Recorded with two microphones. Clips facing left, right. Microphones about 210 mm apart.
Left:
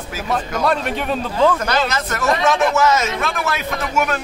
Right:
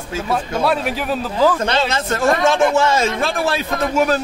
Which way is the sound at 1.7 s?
25° right (ahead or behind).